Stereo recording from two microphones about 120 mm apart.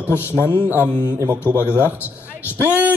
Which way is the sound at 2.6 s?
15° right (ahead or behind).